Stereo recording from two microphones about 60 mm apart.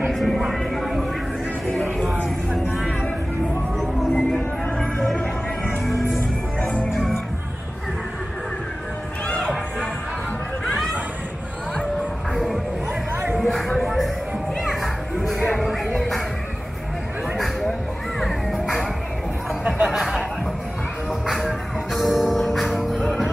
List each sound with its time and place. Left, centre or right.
0.1 s a sound: centre
2.7 s music: centre
5.1 s music: left
6.9 s music: centre
13.1 s music: right
13.4 s music: centre
14.6 s children playing: centre
15.5 s music: centre
17.4 s a sound: centre
18.2 s music: centre
19.9 s a sound: centre
21.3 s music: centre